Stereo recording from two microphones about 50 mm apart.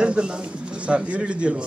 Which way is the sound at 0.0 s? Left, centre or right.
Right.